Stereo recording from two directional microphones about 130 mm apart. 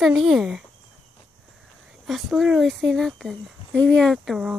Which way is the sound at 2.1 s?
5° right (ahead or behind).